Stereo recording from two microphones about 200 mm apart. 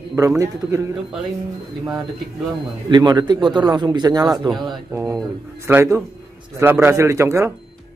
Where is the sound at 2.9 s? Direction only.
20° right (ahead or behind).